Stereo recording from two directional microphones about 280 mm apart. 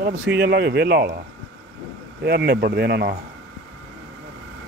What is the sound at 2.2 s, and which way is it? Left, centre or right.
Speech, right.